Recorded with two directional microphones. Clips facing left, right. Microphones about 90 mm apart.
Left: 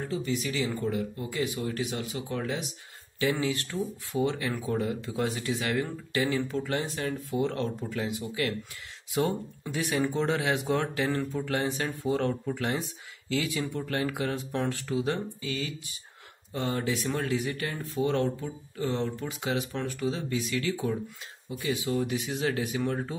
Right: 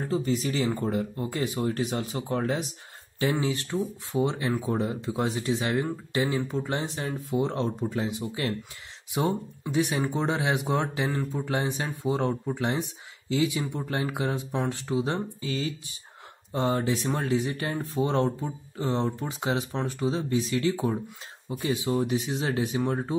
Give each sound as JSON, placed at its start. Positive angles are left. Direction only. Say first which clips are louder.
{"t": 0.0, "sound": "speech", "louder": "right 4 dB", "side_deg": -35}